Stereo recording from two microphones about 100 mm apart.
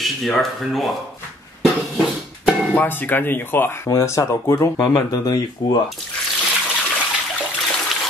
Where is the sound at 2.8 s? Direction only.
20° left (ahead or behind); by 5.8 s 45° left (ahead or behind).